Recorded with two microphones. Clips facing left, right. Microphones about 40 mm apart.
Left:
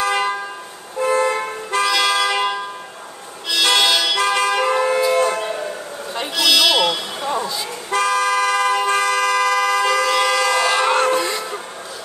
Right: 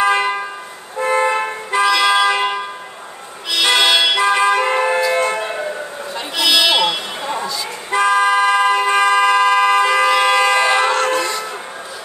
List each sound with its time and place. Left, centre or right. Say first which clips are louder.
0.0 s vehicle horn: right 4 dB; right
0.9 s toot: right 2 dB; right
3.5 s music: right 2 dB; right
5.1 s a sound: even; right
6.3 s buzzer: right 1 dB; right
7.9 s toot: right 4 dB; right